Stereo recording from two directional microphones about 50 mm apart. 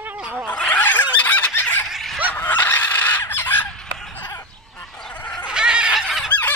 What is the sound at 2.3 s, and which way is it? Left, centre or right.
Fowl, left.